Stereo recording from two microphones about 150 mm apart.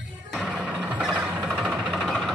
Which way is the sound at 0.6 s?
10° right (ahead or behind).